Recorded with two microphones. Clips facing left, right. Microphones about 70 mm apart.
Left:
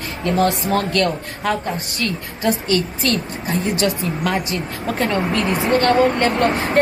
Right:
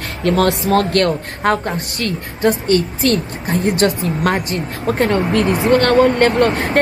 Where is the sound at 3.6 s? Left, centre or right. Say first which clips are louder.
Right 6 dB; right.